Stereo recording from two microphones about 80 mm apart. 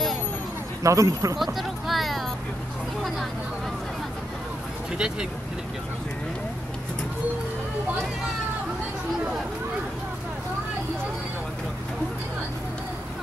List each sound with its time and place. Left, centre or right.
0.8 s speech: right
1.4 s speech: centre
4.9 s speech: centre